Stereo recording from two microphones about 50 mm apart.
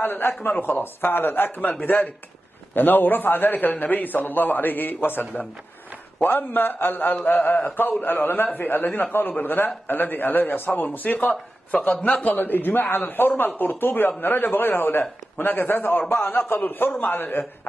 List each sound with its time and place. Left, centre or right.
0.0 s a man's voice: left
12.3 s a man's voice: left
16.1 s a man's voice: left